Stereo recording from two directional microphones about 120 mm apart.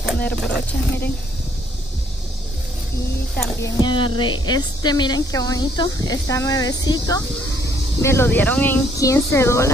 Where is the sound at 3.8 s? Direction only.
40° left (ahead or behind).